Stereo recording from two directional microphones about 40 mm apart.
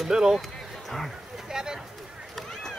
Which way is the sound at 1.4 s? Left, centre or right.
Centre.